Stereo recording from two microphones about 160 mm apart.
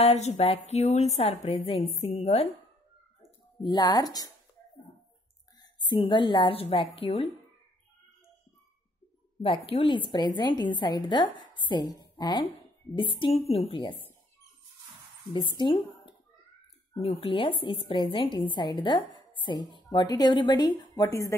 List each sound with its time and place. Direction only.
0.0 s a woman's voice: 45° left (ahead or behind)
3.6 s a woman's voice: 25° left (ahead or behind)
5.6 s a woman's voice: 30° left (ahead or behind)
9.4 s a woman's voice: 35° left (ahead or behind)
15.3 s a woman's voice: 30° left (ahead or behind)